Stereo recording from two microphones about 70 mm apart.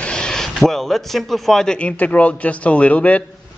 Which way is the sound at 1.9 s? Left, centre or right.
Left.